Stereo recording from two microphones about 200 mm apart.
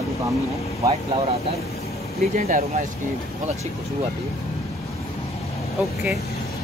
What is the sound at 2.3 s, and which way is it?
Speech, 35° right (ahead or behind).